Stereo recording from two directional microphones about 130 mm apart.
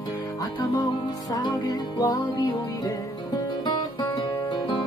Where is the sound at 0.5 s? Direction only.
30° left (ahead or behind).